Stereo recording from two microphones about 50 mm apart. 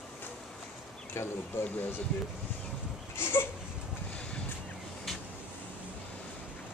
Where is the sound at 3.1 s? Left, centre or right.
Left.